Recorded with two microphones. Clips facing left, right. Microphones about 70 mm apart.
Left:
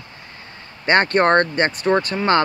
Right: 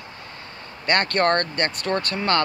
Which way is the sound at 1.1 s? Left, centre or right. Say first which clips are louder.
Left 5 dB; left.